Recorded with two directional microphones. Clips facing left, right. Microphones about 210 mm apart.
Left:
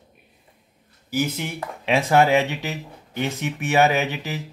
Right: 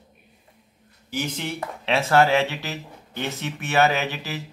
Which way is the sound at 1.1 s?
10° left (ahead or behind).